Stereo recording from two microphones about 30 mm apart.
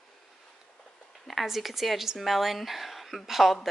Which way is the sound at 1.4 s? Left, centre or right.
Centre.